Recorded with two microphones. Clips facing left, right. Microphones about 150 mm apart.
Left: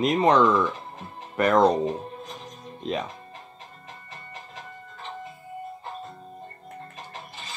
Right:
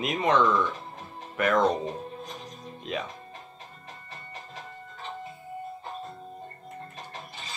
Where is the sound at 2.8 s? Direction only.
35° left (ahead or behind).